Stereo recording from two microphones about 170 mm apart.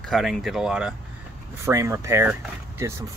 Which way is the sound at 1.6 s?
15° right (ahead or behind).